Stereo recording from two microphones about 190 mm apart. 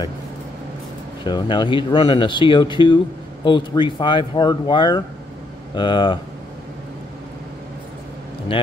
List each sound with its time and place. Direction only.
1.2 s speech: 25° left (ahead or behind)